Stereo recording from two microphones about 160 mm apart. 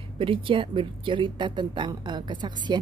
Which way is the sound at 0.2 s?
30° right (ahead or behind).